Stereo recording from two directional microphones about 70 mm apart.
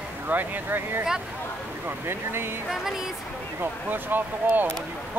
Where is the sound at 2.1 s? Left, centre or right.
Right.